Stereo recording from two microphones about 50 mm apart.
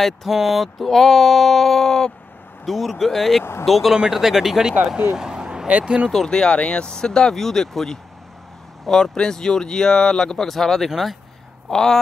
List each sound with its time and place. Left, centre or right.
0.0 s speech: centre
3.9 s speech: centre
5.1 s a sound: centre
5.7 s speech: right
6.1 s speech: centre
11.7 s speech: centre